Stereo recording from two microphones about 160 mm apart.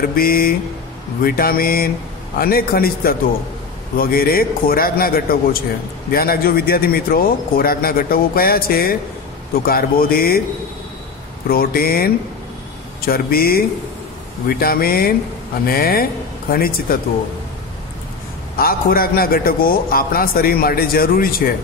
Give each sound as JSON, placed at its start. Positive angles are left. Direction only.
{"t": 0.1, "sound": "a man's voice", "side_deg": 65}
{"t": 11.4, "sound": "a man's voice", "side_deg": 70}
{"t": 18.6, "sound": "a man's voice", "side_deg": 65}